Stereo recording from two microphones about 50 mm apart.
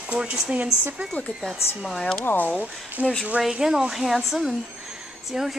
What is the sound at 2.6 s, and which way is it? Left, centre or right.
Speech, right.